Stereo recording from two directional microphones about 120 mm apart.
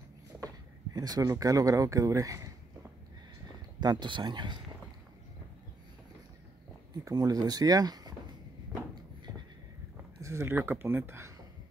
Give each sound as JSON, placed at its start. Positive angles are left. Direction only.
{"t": 0.9, "sound": "speech", "side_deg": -35}
{"t": 3.8, "sound": "speech", "side_deg": -35}
{"t": 6.9, "sound": "speech", "side_deg": -30}
{"t": 10.2, "sound": "speech", "side_deg": -20}